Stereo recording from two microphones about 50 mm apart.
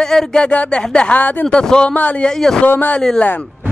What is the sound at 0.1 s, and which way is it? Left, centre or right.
Speech, centre.